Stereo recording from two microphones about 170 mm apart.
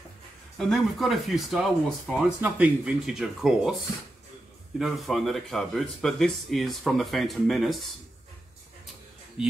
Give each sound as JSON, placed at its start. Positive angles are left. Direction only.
{"t": 0.6, "sound": "speech", "side_deg": 0}